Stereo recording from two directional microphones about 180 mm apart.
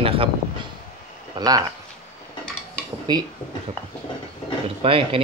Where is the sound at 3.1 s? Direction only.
20° right (ahead or behind).